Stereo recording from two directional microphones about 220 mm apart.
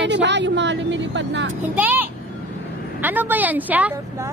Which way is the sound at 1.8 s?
10° right (ahead or behind).